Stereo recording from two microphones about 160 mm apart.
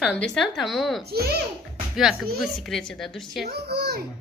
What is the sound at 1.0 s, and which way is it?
Speech, 80° right.